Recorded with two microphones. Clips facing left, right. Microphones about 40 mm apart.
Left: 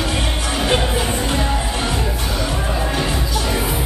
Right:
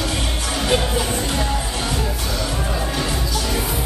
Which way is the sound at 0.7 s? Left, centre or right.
Centre.